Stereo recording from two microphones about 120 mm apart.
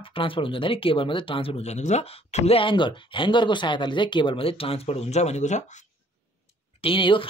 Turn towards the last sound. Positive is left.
turn(degrees=45)  # may be behind; listen again after turning